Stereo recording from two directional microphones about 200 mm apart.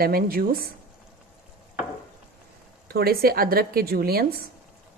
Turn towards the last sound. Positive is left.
turn(degrees=-50)  # may be behind; listen again after turning